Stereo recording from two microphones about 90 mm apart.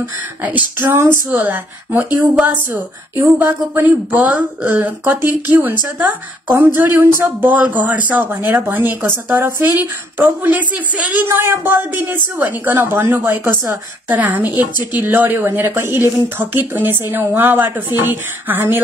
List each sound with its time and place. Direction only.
0.0 s speech: 20° right (ahead or behind)